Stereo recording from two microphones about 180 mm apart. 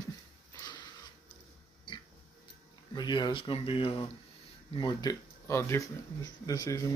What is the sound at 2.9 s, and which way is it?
Speech, 25° left (ahead or behind).